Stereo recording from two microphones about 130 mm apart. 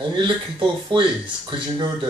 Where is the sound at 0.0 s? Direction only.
40° right (ahead or behind).